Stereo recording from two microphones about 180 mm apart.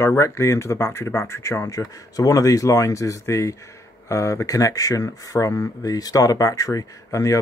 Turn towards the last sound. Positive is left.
turn(degrees=20)  # may be behind; listen again after turning